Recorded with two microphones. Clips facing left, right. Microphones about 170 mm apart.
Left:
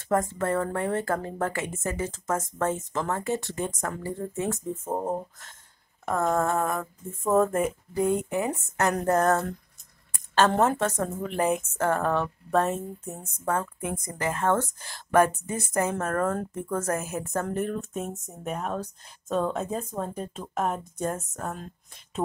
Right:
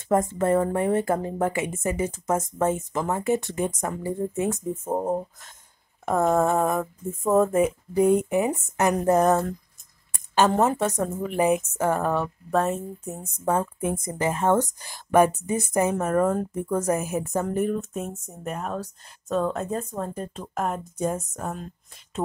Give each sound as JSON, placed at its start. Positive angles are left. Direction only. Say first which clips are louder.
{"t": 0.1, "sound": "speech", "louder": "right 4 dB", "side_deg": -20}
{"t": 6.0, "sound": "a sound", "louder": "right 4 dB", "side_deg": -20}
{"t": 7.2, "sound": "speech", "louder": "right 3 dB", "side_deg": -5}
{"t": 7.9, "sound": "speech", "louder": "right 6 dB", "side_deg": -20}
{"t": 10.5, "sound": "speech", "louder": "right 2 dB", "side_deg": 0}
{"t": 13.5, "sound": "a sound", "louder": "right 4 dB", "side_deg": -20}
{"t": 14.0, "sound": "speech", "louder": "right 2 dB", "side_deg": -20}